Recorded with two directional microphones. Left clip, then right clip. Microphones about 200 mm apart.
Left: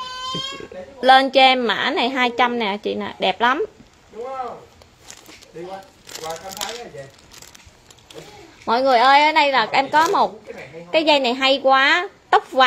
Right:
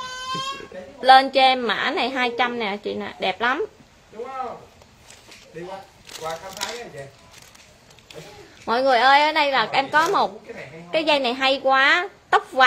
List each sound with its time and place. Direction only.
1.0 s a woman's voice: 20° left (ahead or behind)
8.6 s a woman's voice: 15° left (ahead or behind)